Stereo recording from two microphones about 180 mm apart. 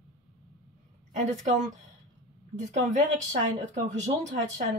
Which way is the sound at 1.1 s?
40° right (ahead or behind).